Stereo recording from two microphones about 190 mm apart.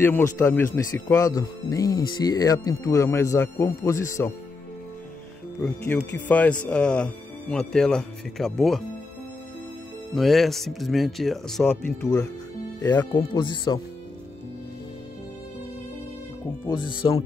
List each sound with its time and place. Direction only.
0.0 s speech: 15° left (ahead or behind)
5.6 s speech: 10° left (ahead or behind)
10.1 s speech: centre (ahead or behind)
13.1 s speech: 25° left (ahead or behind)
16.6 s speech: 25° left (ahead or behind)